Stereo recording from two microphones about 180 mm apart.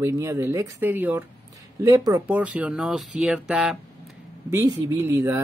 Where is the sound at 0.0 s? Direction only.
15° right (ahead or behind).